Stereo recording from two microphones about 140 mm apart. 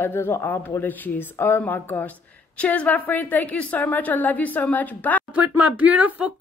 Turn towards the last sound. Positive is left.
turn(degrees=-10)  # may be behind; listen again after turning